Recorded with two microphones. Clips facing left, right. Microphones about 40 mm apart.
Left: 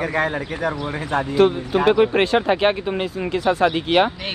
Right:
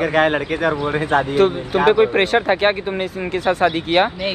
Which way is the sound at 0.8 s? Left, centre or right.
Right.